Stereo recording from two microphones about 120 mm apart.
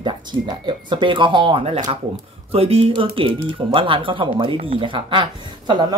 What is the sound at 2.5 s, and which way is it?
Speech, 55° right (ahead or behind).